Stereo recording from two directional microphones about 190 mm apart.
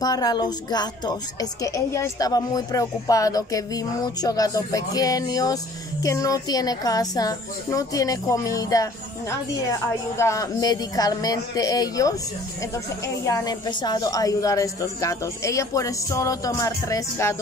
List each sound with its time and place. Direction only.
0.0 s a woman's voice: 20° left (ahead or behind)